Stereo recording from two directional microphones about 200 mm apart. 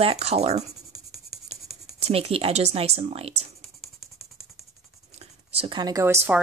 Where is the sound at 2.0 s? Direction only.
30° right (ahead or behind).